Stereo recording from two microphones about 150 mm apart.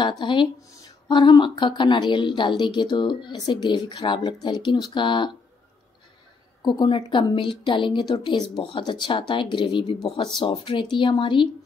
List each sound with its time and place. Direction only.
0.2 s speech: 30° left (ahead or behind)
6.6 s speech: 30° left (ahead or behind)